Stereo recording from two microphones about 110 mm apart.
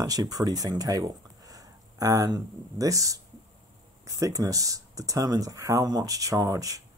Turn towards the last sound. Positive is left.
turn(degrees=-30)  # may be behind; listen again after turning